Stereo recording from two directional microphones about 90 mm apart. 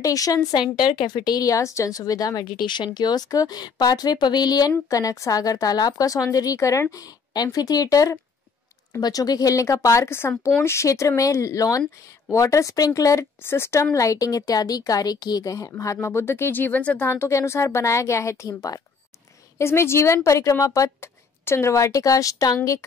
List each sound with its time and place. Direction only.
0.0 s a woman's voice: 40° left (ahead or behind)
0.5 s a woman's voice: 55° left (ahead or behind); by 13.3 s 40° left (ahead or behind)
13.4 s speech: 25° left (ahead or behind)
13.9 s a woman's voice: 40° left (ahead or behind)
19.6 s a woman's voice: 30° left (ahead or behind)